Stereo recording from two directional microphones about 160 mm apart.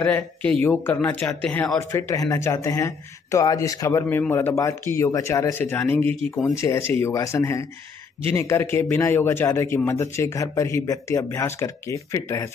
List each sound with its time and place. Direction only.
0.0 s speech: 10° left (ahead or behind)